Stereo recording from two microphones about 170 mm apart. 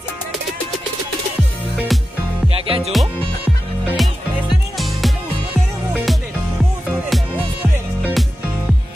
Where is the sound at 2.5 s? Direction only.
35° right (ahead or behind).